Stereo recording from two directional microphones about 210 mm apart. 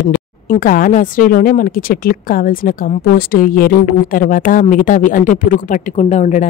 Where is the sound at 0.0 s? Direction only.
40° left (ahead or behind).